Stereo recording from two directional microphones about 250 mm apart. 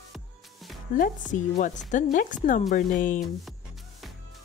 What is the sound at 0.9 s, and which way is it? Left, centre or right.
A woman's voice, left.